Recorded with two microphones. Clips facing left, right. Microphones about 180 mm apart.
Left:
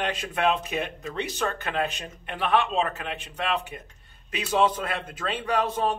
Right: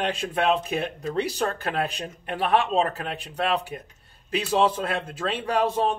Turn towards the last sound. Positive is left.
turn(degrees=-30)  # may be behind; listen again after turning